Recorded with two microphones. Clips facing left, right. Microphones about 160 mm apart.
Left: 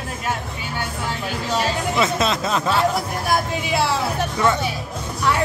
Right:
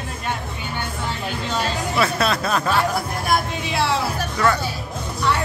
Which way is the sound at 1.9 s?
20° left (ahead or behind).